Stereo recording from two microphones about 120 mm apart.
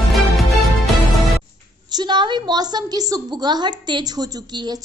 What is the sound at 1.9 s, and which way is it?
A woman's voice, 35° right (ahead or behind).